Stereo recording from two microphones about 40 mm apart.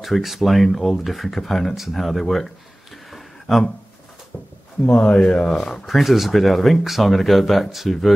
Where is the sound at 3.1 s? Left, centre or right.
Centre.